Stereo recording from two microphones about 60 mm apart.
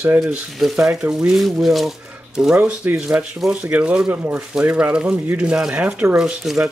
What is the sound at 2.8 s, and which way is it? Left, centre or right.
Speech, right.